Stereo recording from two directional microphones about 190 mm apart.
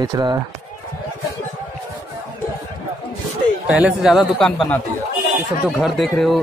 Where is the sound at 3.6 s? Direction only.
5° right (ahead or behind).